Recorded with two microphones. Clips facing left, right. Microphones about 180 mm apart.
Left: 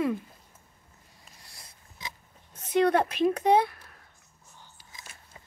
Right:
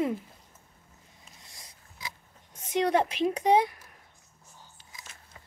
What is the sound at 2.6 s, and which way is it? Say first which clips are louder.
A woman's voice: left 2 dB; 10° right (ahead or behind).